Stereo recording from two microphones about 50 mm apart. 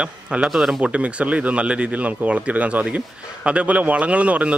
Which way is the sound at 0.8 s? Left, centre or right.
Right.